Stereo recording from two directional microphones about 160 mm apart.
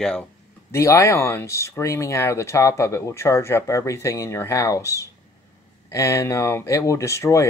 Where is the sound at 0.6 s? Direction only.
20° left (ahead or behind).